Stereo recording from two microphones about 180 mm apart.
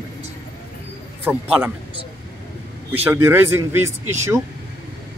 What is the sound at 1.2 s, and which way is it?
Speech, 10° right (ahead or behind).